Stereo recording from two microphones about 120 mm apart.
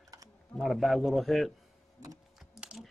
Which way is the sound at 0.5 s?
Centre (ahead or behind).